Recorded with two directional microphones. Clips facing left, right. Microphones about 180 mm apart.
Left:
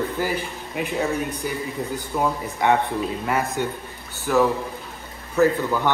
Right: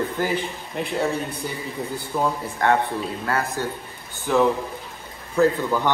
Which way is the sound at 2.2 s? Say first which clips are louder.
Even; 15° left (ahead or behind).